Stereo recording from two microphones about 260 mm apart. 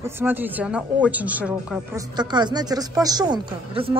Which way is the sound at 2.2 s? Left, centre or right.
Centre.